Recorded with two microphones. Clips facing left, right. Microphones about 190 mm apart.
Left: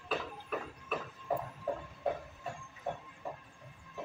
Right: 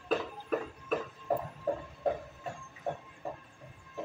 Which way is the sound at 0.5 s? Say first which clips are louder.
Right 6 dB; 45° right (ahead or behind).